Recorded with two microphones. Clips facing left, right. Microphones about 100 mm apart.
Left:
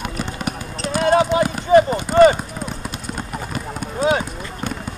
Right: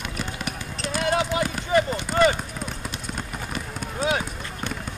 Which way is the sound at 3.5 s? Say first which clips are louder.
Left 5 dB; 40° left (ahead or behind).